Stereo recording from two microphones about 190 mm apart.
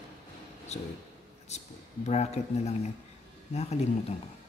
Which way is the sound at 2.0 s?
35° left (ahead or behind).